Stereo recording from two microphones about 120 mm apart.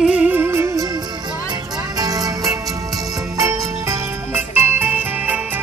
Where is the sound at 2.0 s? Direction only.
30° right (ahead or behind).